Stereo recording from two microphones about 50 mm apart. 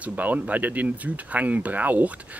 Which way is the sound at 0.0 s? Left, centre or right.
Right.